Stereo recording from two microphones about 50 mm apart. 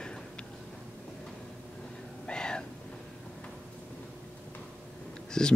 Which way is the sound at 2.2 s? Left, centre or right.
Centre.